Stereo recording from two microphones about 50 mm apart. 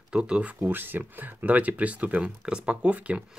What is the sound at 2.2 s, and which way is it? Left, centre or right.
Speech, centre.